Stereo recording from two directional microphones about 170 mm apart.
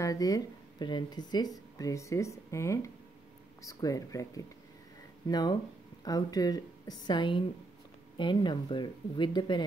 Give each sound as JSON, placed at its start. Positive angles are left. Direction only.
{"t": 0.0, "sound": "speech", "side_deg": 20}